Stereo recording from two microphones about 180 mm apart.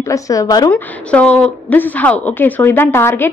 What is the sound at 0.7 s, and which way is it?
A woman's voice, 5° left (ahead or behind).